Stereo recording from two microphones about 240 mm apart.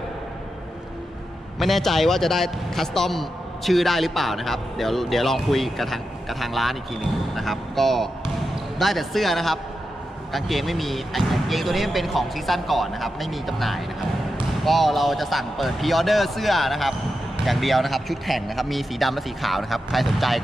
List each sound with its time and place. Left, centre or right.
1.6 s a man's voice: centre